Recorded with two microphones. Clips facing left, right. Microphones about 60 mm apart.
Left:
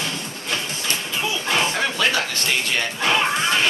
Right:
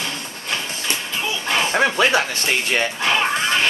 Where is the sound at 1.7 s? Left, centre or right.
Right.